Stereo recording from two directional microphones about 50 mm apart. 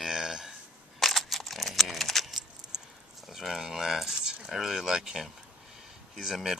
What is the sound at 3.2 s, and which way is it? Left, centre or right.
Speech, centre.